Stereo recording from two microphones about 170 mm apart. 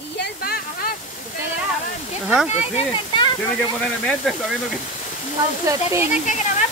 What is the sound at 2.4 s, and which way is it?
Speech, 40° left (ahead or behind).